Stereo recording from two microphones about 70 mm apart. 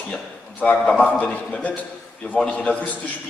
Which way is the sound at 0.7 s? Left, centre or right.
Centre.